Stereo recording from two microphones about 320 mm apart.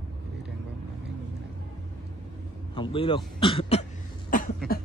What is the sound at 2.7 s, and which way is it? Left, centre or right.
Speech, centre.